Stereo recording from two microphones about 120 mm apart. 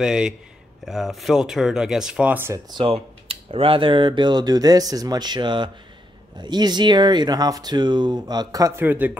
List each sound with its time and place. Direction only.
0.0 s speech: 5° right (ahead or behind)
2.7 s speech: 50° right (ahead or behind); by 8.8 s 30° right (ahead or behind)
8.8 s speech: 15° right (ahead or behind)